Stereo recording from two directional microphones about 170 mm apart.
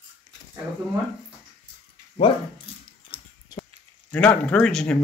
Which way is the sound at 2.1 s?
30° left (ahead or behind).